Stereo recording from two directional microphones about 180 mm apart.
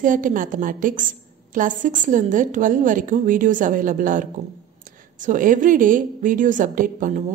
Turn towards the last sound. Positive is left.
turn(degrees=-45)  # may be behind; listen again after turning